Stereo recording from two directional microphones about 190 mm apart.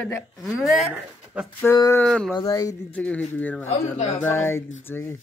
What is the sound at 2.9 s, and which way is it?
Speech, 5° left (ahead or behind).